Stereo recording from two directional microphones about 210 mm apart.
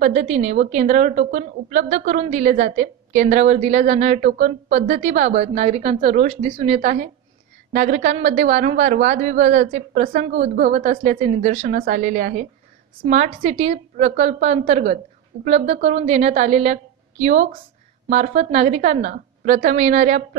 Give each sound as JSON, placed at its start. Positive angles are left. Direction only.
{"t": 0.0, "sound": "a woman's voice", "side_deg": -35}
{"t": 10.4, "sound": "a woman's voice", "side_deg": -30}